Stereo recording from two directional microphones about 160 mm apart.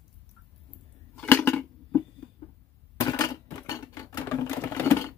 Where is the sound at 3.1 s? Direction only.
20° left (ahead or behind).